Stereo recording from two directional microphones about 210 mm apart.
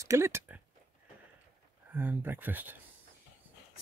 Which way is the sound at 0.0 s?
15° right (ahead or behind).